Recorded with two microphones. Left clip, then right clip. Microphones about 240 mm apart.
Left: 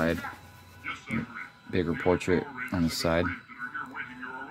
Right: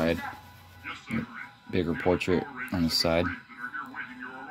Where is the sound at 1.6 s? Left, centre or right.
Centre.